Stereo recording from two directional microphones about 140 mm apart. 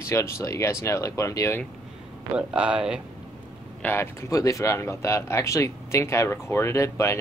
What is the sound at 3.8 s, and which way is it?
Speech, 15° left (ahead or behind).